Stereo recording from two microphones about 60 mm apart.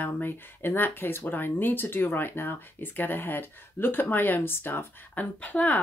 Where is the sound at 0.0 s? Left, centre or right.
Left.